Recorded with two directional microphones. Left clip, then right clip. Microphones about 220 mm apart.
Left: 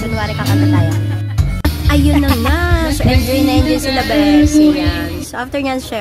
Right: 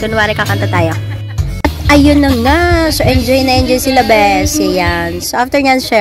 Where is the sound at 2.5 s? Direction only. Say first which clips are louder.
Right 7 dB; 25° right (ahead or behind).